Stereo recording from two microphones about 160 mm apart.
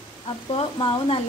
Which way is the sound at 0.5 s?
35° left (ahead or behind).